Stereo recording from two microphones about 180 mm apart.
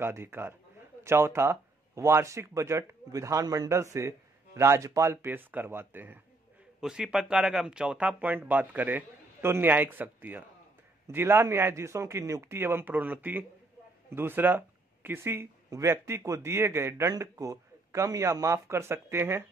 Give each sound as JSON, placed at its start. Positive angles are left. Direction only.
{"t": 0.0, "sound": "speech", "side_deg": -15}